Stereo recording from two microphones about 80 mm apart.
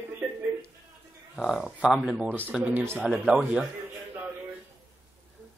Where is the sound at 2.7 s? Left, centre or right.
Right.